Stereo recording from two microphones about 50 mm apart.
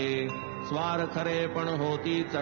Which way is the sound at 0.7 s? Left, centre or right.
Centre.